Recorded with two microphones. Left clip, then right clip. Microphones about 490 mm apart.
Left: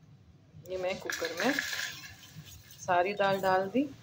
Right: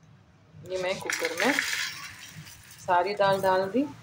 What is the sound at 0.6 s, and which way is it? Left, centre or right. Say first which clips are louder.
Speech: right 4 dB; left.